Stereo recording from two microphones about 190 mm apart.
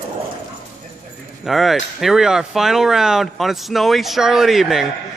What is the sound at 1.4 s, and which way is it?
Speech, centre (ahead or behind).